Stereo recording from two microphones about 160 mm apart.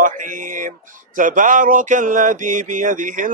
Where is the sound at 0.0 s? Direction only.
55° right (ahead or behind).